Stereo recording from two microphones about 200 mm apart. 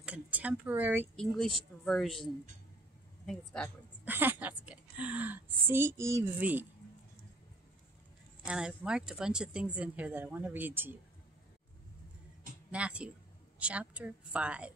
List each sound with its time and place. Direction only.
0.0 s a sound: 5° right (ahead or behind)
1.1 s speech: centre (ahead or behind)
4.0 s a woman's voice: 10° right (ahead or behind)
8.5 s speech: 5° right (ahead or behind)
12.7 s a woman's voice: 5° right (ahead or behind)